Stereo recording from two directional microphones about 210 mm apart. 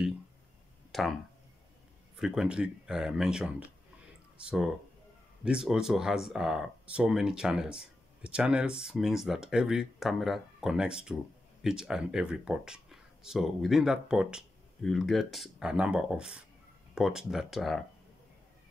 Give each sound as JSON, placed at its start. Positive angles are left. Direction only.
{"t": 0.9, "sound": "speech", "side_deg": 0}
{"t": 2.1, "sound": "speech", "side_deg": -5}